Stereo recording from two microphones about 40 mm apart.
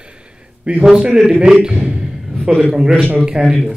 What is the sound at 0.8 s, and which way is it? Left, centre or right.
Speech, right.